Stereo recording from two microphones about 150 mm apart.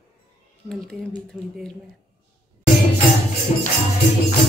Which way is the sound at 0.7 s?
Centre (ahead or behind).